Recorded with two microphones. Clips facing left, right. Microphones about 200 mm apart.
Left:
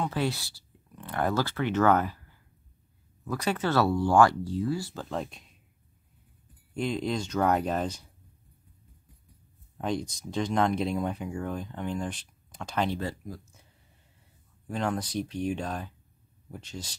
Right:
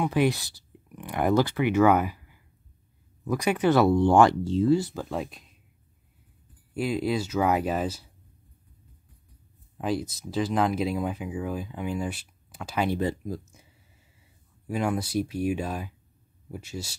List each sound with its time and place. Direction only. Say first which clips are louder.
0.0 s speech: right 6 dB; 15° right (ahead or behind)
4.9 s speech: right 2 dB; 5° right (ahead or behind)
6.7 s speech: right 3 dB; 5° right (ahead or behind)
9.8 s speech: right 2 dB; 5° right (ahead or behind)
14.7 s speech: right 3 dB; 10° right (ahead or behind)